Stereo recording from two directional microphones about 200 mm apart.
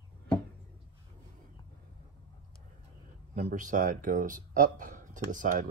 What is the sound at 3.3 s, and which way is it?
Speech, 40° right (ahead or behind).